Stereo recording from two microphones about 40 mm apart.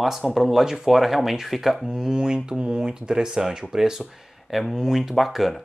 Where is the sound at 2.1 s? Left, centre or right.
Centre.